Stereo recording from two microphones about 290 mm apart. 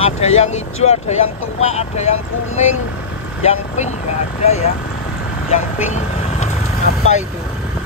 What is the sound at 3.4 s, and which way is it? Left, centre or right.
Speech, centre.